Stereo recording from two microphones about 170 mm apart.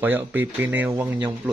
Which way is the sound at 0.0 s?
10° right (ahead or behind).